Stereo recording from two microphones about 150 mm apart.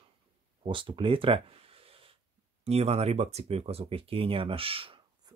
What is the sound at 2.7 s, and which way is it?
Speech, 45° right (ahead or behind).